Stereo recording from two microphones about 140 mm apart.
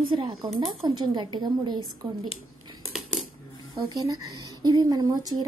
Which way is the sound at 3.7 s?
30° right (ahead or behind).